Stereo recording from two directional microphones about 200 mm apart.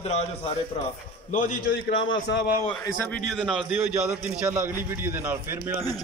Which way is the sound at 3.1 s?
Centre (ahead or behind).